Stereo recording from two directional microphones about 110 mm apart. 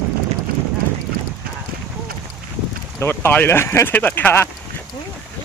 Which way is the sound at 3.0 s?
20° left (ahead or behind).